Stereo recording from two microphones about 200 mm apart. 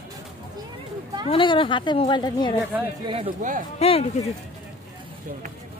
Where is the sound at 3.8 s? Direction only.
30° left (ahead or behind).